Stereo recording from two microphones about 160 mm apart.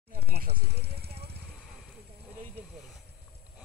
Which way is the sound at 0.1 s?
70° right (ahead or behind).